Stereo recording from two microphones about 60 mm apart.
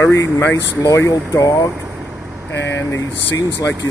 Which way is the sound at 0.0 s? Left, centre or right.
Left.